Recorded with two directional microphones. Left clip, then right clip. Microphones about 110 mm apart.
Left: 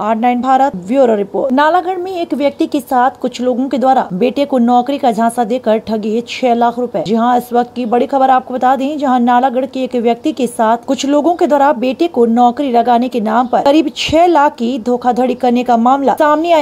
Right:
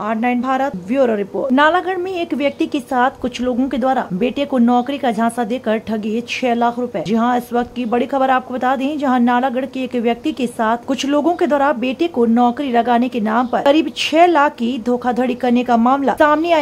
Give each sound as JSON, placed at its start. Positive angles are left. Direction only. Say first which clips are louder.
{"t": 0.0, "sound": "a woman's voice", "louder": "left 6 dB", "side_deg": 30}
{"t": 1.3, "sound": "a woman's voice", "louder": "left 3 dB", "side_deg": 5}